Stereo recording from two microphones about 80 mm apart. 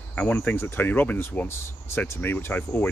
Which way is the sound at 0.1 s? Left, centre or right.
Centre.